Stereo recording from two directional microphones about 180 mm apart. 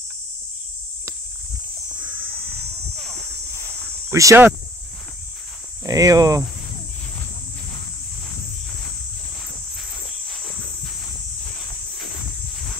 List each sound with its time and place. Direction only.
3.5 s cricket: 15° left (ahead or behind)
4.1 s cricket: 15° right (ahead or behind)
5.9 s speech: 20° right (ahead or behind)